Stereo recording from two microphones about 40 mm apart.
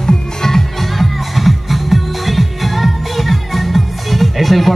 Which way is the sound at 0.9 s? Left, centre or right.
Centre.